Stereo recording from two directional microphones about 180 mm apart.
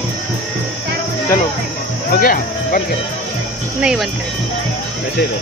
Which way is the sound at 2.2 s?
50° left (ahead or behind).